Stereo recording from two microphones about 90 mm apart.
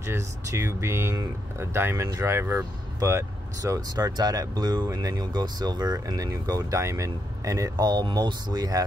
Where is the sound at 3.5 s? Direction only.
40° right (ahead or behind).